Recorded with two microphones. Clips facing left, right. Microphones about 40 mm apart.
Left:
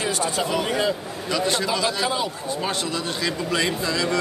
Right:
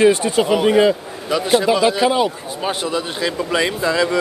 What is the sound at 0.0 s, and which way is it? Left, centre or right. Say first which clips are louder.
A man's voice: right 10 dB; right.